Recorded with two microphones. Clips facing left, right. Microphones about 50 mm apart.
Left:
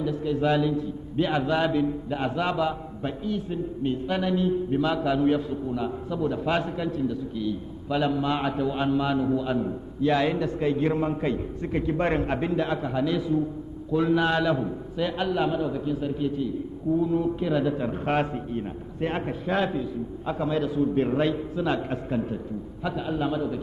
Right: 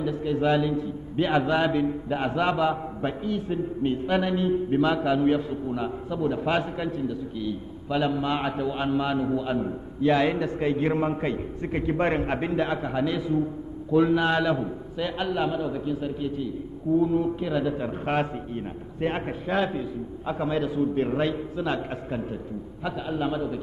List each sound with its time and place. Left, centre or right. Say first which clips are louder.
0.0 s a man's voice: even; right
3.3 s a man's voice: right 1 dB; right
5.1 s a man's voice: even; centre
8.2 s a man's voice: left 1 dB; right
12.0 s a man's voice: right 1 dB; centre
12.3 s a man's voice: even; right
14.6 s a man's voice: left 2 dB; centre
17.0 s a man's voice: right 1 dB; centre
17.4 s a man's voice: left 1 dB; centre
18.9 s a man's voice: right 1 dB; centre
19.4 s a man's voice: even; centre
20.3 s a man's voice: even; right
20.9 s a man's voice: left 1 dB; centre